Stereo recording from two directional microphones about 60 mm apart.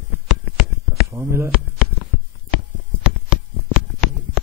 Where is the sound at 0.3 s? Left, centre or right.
Centre.